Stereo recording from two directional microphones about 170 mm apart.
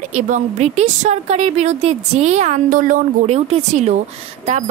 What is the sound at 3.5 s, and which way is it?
Speech, 40° right (ahead or behind).